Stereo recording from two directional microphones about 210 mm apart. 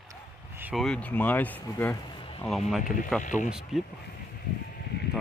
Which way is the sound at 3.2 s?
35° left (ahead or behind).